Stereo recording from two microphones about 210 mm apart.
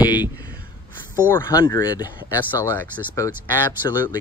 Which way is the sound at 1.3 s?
10° left (ahead or behind).